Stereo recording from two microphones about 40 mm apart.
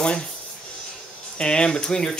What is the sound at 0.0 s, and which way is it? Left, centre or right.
Speech, left.